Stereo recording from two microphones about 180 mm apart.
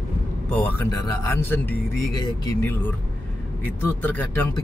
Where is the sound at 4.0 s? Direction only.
10° left (ahead or behind).